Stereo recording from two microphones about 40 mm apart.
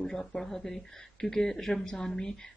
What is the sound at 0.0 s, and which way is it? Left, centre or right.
Speech, centre.